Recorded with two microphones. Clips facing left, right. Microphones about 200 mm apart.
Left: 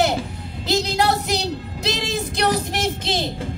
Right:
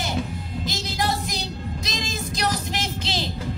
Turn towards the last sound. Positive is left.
turn(degrees=55)  # may be behind; listen again after turning